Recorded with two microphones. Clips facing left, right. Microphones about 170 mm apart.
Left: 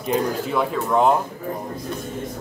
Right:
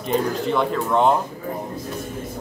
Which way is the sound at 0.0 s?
5° left (ahead or behind).